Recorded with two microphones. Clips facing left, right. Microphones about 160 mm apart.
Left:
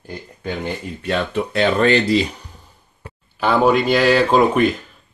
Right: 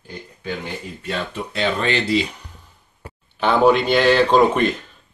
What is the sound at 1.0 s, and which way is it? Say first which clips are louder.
Speech: left 7 dB; 60° left (ahead or behind).